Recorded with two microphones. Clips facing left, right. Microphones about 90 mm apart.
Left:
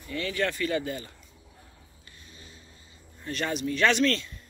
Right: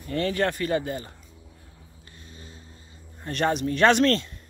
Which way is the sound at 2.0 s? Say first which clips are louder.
Right 4 dB; 35° right (ahead or behind).